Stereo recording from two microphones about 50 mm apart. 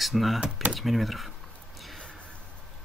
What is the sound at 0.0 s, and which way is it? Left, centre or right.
Speech, centre.